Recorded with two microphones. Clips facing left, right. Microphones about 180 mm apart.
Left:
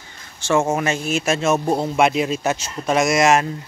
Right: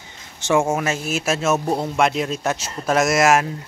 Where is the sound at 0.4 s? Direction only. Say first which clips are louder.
Even; 15° right (ahead or behind).